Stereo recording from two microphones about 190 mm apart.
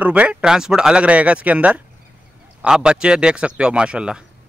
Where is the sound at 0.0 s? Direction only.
5° right (ahead or behind).